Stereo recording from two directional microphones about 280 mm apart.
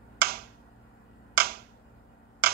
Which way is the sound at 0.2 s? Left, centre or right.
Right.